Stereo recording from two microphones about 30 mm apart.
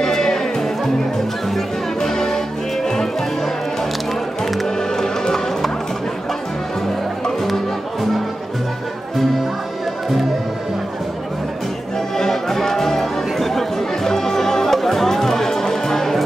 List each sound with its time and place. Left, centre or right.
0.0 s music: centre
2.0 s music: centre
12.2 s music: centre